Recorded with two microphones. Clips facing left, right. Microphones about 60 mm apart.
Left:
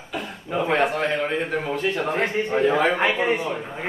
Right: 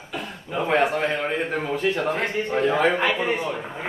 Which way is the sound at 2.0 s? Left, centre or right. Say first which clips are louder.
Left 1 dB; centre.